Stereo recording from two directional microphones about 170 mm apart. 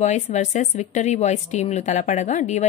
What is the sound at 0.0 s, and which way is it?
A woman's voice, 45° left (ahead or behind).